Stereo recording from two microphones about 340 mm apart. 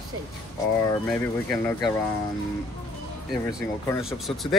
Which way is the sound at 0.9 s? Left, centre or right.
Centre.